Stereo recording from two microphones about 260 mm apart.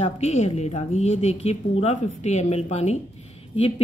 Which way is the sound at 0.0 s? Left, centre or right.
Left.